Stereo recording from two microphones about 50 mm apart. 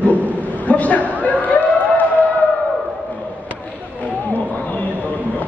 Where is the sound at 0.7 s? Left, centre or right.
Left.